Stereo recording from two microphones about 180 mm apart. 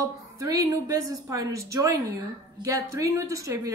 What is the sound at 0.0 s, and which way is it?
A woman's voice, 20° right (ahead or behind).